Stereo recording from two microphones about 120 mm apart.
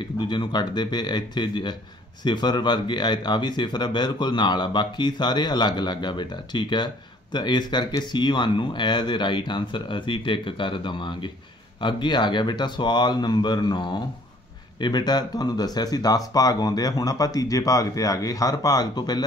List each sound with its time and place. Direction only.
0.2 s speech: 40° left (ahead or behind)